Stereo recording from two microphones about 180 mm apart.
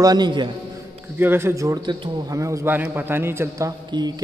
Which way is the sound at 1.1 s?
10° right (ahead or behind).